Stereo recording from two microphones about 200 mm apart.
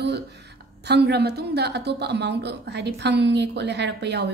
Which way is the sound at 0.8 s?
55° right (ahead or behind).